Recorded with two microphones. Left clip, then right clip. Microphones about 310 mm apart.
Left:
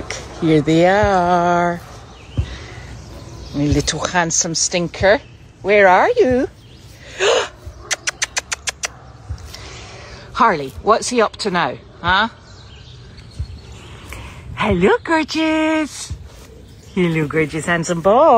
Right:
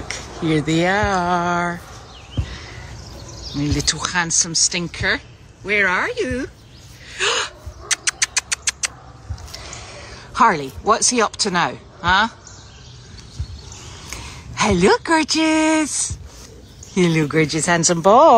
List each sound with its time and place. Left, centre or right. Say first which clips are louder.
0.4 s speech: left 6 dB; centre
2.4 s a sound: left 1 dB; centre
3.5 s speech: left 3 dB; centre
7.1 s a sound: left 4 dB; centre
9.5 s basketball bounce: right 1 dB; centre
9.8 s speech: even; centre
14.1 s speech: right 1 dB; centre